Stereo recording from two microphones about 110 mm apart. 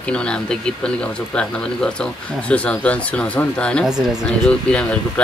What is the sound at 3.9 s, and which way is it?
Speech, 5° right (ahead or behind).